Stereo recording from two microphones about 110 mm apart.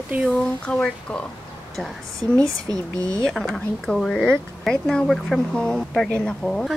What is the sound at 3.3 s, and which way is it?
Speech, 5° left (ahead or behind).